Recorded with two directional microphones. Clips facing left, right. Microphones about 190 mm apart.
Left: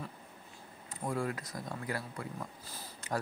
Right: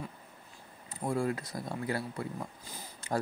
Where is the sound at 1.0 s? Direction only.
25° right (ahead or behind).